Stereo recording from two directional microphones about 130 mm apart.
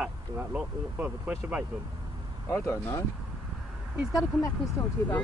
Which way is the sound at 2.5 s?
20° left (ahead or behind).